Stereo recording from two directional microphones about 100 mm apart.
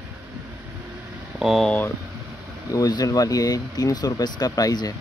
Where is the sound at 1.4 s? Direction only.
Centre (ahead or behind).